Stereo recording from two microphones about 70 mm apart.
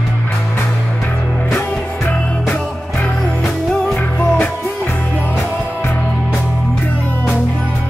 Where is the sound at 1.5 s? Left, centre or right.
Left.